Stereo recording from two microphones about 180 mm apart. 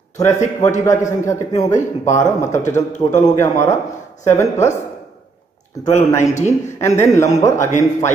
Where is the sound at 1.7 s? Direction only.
40° left (ahead or behind).